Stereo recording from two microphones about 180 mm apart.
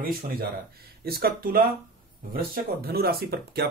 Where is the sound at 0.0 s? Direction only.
55° right (ahead or behind).